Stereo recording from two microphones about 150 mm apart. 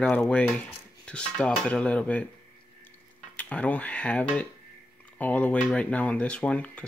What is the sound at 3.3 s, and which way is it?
Speech, 10° left (ahead or behind).